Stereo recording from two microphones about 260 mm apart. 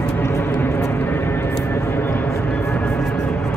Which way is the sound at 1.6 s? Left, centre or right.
Centre.